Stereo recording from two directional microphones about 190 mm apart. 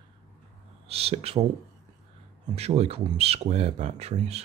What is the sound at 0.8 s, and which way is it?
Speech, 30° right (ahead or behind).